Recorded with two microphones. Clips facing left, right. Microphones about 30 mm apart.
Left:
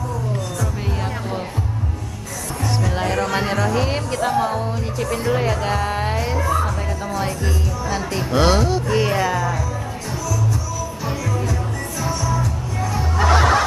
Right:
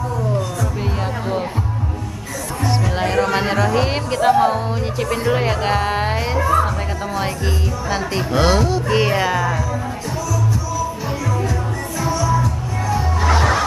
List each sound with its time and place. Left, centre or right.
2.6 s speech: centre
8.4 s speech: centre
8.8 s speech: right